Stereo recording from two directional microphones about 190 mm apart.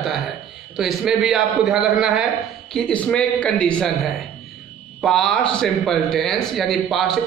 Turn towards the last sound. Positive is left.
turn(degrees=0)  # may be behind; listen again after turning